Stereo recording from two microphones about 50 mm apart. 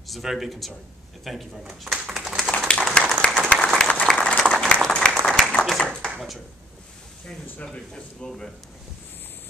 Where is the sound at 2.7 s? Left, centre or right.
Left.